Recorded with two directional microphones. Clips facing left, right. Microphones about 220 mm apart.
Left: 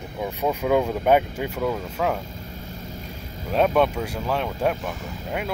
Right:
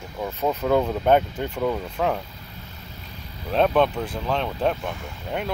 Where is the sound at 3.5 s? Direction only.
10° left (ahead or behind).